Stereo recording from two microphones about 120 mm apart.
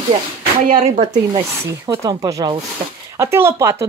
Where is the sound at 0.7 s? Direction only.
70° right (ahead or behind).